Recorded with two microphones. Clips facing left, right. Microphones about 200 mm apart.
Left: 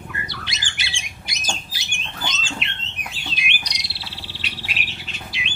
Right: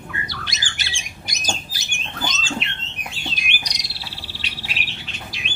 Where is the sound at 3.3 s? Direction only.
45° right (ahead or behind).